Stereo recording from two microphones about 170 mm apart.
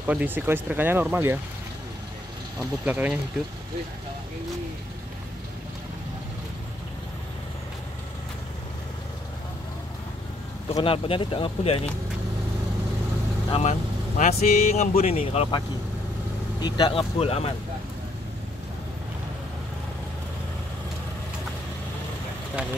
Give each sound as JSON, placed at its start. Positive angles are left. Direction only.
{"t": 0.0, "sound": "speech", "side_deg": -10}
{"t": 2.8, "sound": "speech", "side_deg": -10}
{"t": 10.7, "sound": "speech", "side_deg": 35}
{"t": 13.5, "sound": "speech", "side_deg": 40}
{"t": 16.6, "sound": "speech", "side_deg": 25}